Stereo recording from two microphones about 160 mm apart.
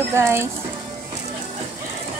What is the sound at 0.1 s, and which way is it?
Speech, 15° right (ahead or behind).